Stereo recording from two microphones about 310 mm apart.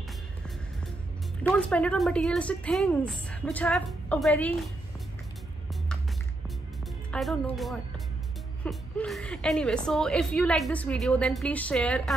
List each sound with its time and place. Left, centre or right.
1.6 s a woman's voice: centre
7.1 s a woman's voice: centre